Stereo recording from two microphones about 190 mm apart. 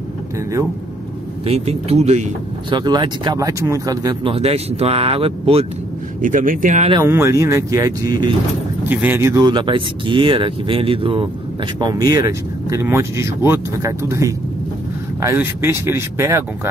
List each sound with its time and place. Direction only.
1.4 s speech: 35° right (ahead or behind)
2.7 s speech: 25° right (ahead or behind)
6.2 s speech: 45° right (ahead or behind)
6.9 s speech: 15° right (ahead or behind)